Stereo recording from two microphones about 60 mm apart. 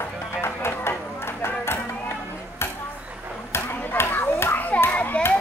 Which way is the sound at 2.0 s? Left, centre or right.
Left.